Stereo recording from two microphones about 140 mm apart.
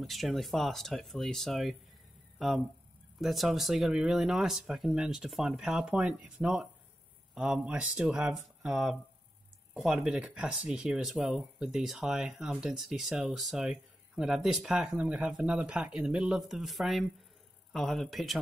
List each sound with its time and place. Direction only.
0.0 s speech: centre (ahead or behind)